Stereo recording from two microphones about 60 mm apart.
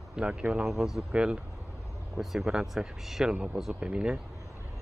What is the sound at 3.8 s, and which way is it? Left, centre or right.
Speech, centre.